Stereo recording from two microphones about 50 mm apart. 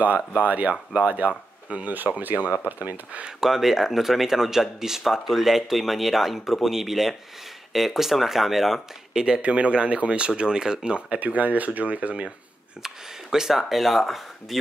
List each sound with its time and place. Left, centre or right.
0.4 s speech: right
3.3 s speech: centre
9.4 s speech: right
12.8 s speech: centre